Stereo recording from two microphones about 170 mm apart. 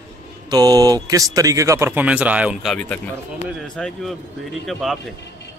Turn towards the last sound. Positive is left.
turn(degrees=0)  # may be behind; listen again after turning